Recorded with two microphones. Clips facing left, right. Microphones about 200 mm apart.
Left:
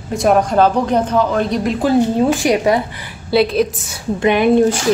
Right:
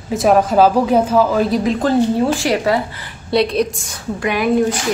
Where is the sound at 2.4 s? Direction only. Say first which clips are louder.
Left 2 dB; 20° left (ahead or behind).